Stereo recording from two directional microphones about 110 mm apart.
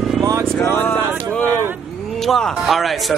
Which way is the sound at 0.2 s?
30° right (ahead or behind).